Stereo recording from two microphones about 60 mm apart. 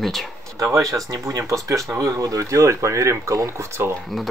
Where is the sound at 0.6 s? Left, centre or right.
Right.